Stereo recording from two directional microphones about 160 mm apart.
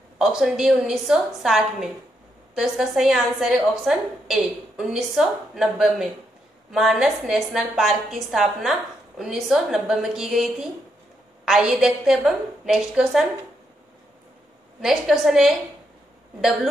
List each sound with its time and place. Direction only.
0.2 s a woman's voice: centre (ahead or behind)
14.8 s a woman's voice: centre (ahead or behind)